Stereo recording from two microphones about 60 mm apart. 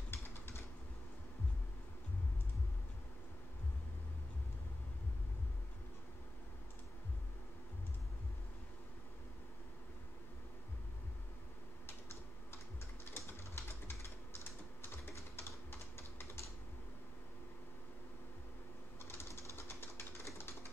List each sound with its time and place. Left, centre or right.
0.1 s typing: left
13.1 s typing: left
19.0 s a sound: left